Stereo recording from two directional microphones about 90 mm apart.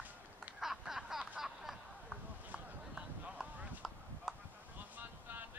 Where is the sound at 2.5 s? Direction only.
10° right (ahead or behind).